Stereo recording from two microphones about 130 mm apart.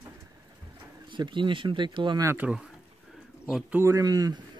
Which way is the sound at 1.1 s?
40° right (ahead or behind).